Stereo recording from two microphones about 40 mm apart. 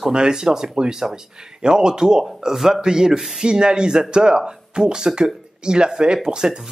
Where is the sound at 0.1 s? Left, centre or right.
Centre.